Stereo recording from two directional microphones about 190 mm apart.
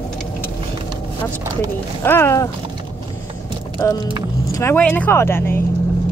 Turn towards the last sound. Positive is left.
turn(degrees=10)  # may be behind; listen again after turning